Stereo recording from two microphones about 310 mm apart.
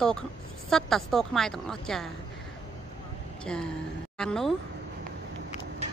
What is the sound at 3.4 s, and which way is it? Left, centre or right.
Speech, centre.